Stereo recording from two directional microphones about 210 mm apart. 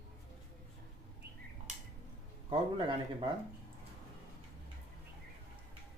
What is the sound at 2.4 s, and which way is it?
Speech, 25° right (ahead or behind).